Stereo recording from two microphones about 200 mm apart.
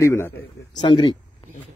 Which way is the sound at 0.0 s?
15° left (ahead or behind).